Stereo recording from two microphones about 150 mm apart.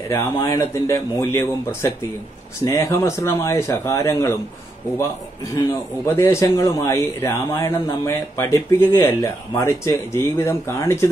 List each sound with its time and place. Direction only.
0.1 s a man's voice: 20° left (ahead or behind)
5.7 s a man's voice: 20° left (ahead or behind)